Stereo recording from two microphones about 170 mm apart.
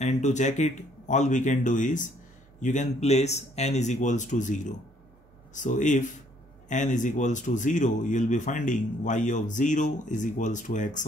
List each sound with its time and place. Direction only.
0.0 s a man's voice: 45° left (ahead or behind)